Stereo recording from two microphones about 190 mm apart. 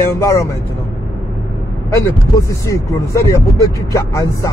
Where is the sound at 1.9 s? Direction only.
15° left (ahead or behind).